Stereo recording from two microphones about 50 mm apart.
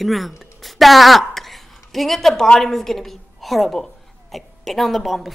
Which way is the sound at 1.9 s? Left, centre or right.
Centre.